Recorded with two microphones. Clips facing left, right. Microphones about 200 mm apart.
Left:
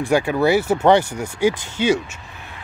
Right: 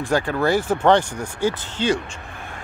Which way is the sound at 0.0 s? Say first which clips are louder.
Left 3 dB; 10° left (ahead or behind).